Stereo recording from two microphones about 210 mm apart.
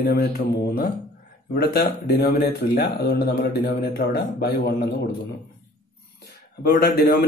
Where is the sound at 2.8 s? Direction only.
50° left (ahead or behind).